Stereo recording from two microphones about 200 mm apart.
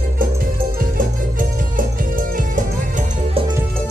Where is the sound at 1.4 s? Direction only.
45° right (ahead or behind).